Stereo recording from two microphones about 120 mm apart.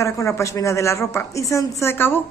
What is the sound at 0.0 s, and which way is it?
Speech, 25° left (ahead or behind).